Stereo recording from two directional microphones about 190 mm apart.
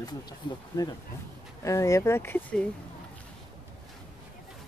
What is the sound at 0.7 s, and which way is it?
Speech, 15° left (ahead or behind).